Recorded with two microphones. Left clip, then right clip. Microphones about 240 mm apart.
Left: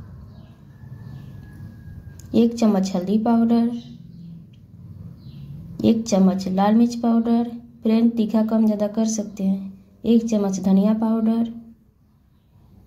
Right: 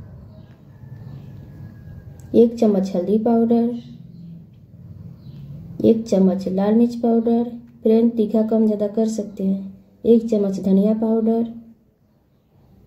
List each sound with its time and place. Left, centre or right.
2.3 s a woman's voice: left
5.8 s a woman's voice: left